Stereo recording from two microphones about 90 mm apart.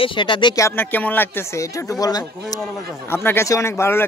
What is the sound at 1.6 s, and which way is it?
Speech, 35° left (ahead or behind).